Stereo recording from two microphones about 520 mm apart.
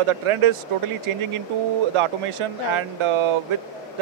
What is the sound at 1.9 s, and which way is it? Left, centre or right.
Speech, right.